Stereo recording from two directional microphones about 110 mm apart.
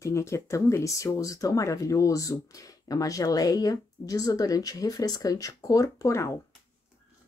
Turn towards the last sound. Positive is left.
turn(degrees=25)  # may be behind; listen again after turning